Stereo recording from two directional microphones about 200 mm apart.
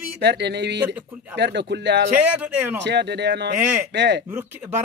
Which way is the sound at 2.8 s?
60° right (ahead or behind).